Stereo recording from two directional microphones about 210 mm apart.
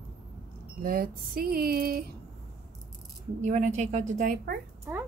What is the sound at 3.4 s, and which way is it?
A woman's voice, 35° right (ahead or behind).